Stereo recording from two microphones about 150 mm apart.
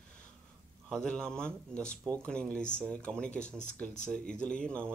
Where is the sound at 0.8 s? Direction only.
5° left (ahead or behind).